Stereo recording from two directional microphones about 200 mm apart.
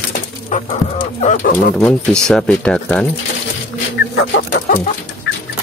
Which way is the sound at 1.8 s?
5° left (ahead or behind).